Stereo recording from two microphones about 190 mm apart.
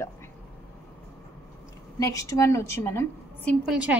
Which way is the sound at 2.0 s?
15° left (ahead or behind).